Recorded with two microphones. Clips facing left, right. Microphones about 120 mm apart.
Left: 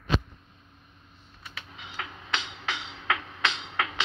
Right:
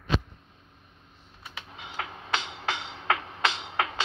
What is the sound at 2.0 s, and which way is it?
Music, 40° right (ahead or behind).